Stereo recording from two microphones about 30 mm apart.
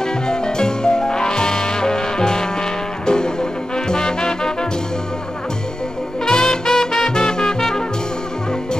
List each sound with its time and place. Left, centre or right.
0.0 s music: left
6.2 s music: left